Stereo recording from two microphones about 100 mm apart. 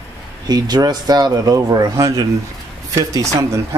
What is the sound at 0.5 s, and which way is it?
Speech, 45° right (ahead or behind).